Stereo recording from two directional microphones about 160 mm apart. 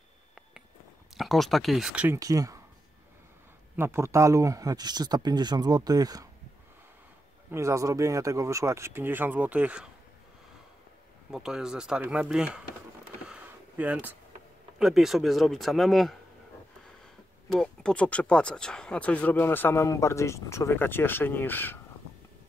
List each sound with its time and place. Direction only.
1.1 s speech: centre (ahead or behind)
2.1 s speech: 20° right (ahead or behind)
3.7 s speech: 15° right (ahead or behind)
7.5 s speech: 20° right (ahead or behind)
11.2 s speech: 5° right (ahead or behind)
13.3 s a sound: 10° right (ahead or behind)
14.8 s speech: centre (ahead or behind)
17.5 s speech: 5° left (ahead or behind)